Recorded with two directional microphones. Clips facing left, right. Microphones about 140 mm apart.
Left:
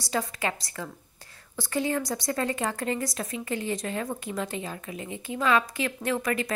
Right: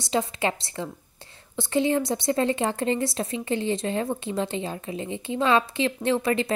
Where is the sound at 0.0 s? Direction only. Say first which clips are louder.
Right 4 dB; 25° right (ahead or behind).